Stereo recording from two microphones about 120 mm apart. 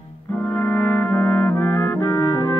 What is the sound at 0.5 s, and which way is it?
Trumpet, 10° left (ahead or behind).